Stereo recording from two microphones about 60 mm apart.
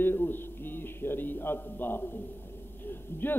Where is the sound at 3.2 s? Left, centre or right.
Left.